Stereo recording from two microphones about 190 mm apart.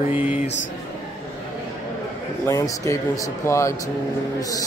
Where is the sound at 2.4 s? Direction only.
15° left (ahead or behind).